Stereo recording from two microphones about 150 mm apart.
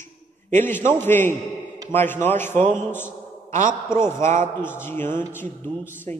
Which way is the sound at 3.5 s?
60° right (ahead or behind).